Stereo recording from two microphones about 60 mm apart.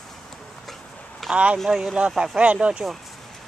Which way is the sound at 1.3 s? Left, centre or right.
Right.